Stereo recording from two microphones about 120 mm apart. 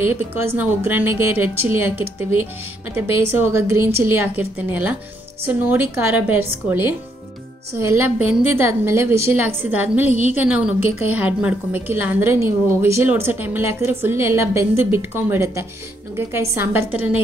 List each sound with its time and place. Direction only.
0.0 s a woman's voice: 20° right (ahead or behind)